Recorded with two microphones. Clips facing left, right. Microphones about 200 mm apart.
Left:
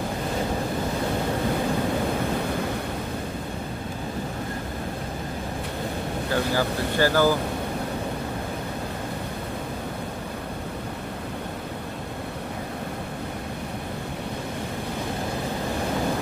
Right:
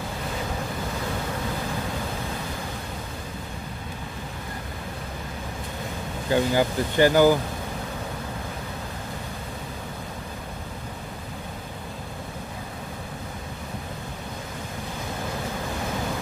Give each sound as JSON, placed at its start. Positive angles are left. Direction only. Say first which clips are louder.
{"t": 6.3, "sound": "speech", "louder": "right 4 dB", "side_deg": -20}